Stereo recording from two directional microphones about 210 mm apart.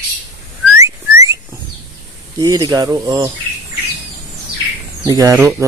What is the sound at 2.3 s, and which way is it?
Speech, 20° right (ahead or behind).